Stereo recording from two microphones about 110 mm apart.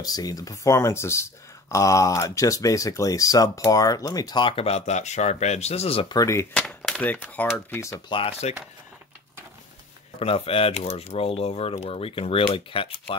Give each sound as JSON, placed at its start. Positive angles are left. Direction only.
{"t": 0.0, "sound": "speech", "side_deg": 35}
{"t": 6.0, "sound": "speech", "side_deg": 30}
{"t": 6.5, "sound": "a sound", "side_deg": 5}
{"t": 7.1, "sound": "speech", "side_deg": 15}
{"t": 8.1, "sound": "speech", "side_deg": 50}
{"t": 10.1, "sound": "speech", "side_deg": 60}